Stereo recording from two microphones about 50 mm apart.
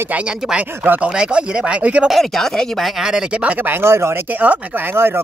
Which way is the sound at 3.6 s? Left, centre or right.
Right.